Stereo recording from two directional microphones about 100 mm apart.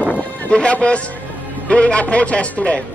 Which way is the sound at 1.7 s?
10° left (ahead or behind).